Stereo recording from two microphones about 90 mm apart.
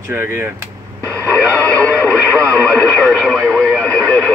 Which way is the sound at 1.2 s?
15° left (ahead or behind).